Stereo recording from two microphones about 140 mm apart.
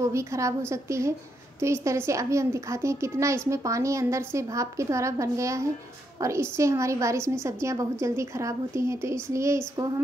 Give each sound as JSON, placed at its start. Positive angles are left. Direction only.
{"t": 0.0, "sound": "a child's voice", "side_deg": -20}